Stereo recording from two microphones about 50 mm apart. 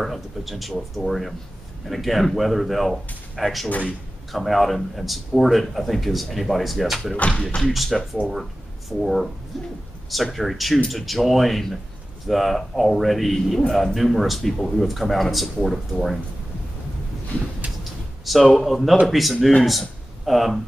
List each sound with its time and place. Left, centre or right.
0.0 s speech: centre
7.2 s speech: left
7.6 s speech: centre
17.3 s a sound: left
18.2 s speech: centre